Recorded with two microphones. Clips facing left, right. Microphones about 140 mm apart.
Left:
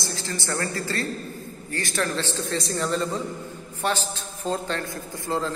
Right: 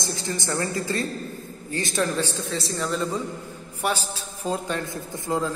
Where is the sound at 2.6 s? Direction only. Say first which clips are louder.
Left 1 dB; centre (ahead or behind).